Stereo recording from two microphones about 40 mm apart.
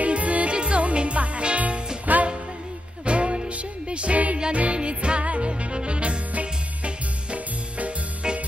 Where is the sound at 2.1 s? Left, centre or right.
Right.